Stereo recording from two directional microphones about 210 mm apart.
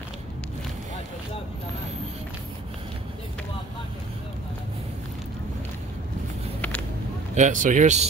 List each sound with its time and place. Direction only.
7.3 s speech: 35° right (ahead or behind)